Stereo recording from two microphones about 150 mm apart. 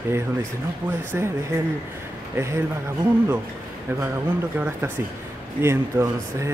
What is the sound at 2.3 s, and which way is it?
Speech, 20° right (ahead or behind).